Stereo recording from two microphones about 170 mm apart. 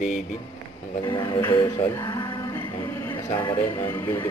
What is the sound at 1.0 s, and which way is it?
Speech, 25° left (ahead or behind).